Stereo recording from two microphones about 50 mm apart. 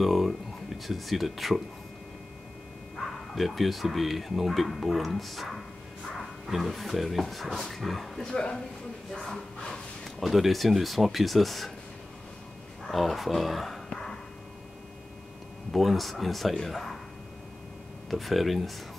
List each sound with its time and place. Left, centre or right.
0.0 s speech: centre
3.3 s speech: centre
8.3 s speech: centre
10.2 s speech: centre
12.8 s speech: centre
15.7 s speech: centre
18.1 s speech: centre